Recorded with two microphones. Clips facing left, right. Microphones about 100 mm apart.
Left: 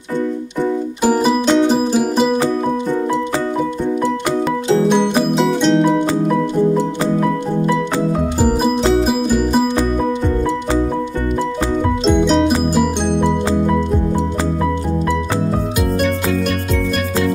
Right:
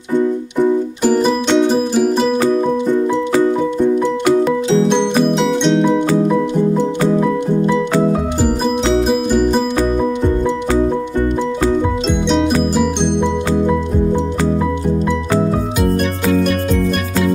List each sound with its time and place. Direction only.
1.0 s music: 10° left (ahead or behind)
5.5 s music: centre (ahead or behind)
8.8 s music: 5° left (ahead or behind)
12.1 s music: 5° left (ahead or behind)